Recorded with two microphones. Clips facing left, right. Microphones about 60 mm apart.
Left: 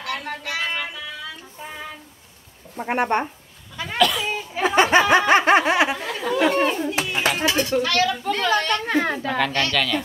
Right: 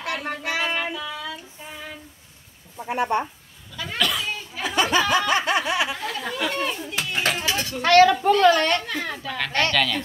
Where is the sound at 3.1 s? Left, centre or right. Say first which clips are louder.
Left 1 dB; left.